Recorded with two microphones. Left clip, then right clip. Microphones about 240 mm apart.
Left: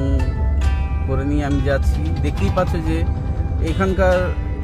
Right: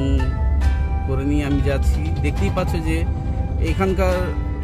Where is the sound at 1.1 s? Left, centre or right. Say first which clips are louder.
Left 1 dB; centre.